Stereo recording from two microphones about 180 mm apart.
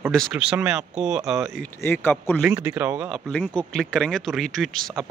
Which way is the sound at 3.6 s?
5° left (ahead or behind).